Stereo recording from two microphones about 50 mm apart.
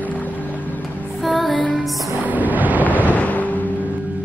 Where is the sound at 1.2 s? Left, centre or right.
Centre.